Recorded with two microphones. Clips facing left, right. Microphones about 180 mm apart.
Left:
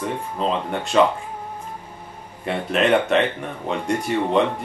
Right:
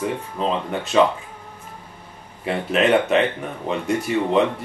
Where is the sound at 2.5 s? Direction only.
5° right (ahead or behind).